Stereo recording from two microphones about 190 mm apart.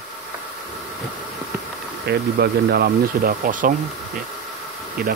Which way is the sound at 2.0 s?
55° right (ahead or behind).